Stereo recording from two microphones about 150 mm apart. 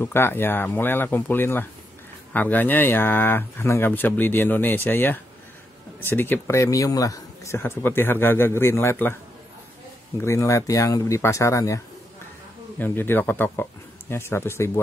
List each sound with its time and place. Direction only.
0.0 s speech: 15° left (ahead or behind)
10.2 s speech: 20° left (ahead or behind)